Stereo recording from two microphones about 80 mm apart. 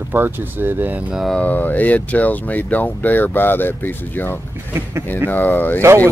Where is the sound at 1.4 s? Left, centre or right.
Left.